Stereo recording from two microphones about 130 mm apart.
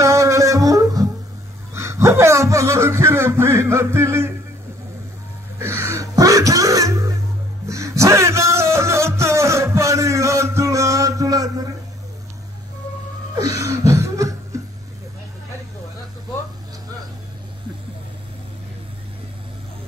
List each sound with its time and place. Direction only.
0.0 s music: 25° right (ahead or behind)
1.7 s a sound: 20° right (ahead or behind)
5.6 s music: 20° right (ahead or behind)
13.4 s laughter: 25° right (ahead or behind)